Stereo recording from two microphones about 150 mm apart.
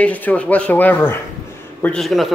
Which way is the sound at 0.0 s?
10° left (ahead or behind).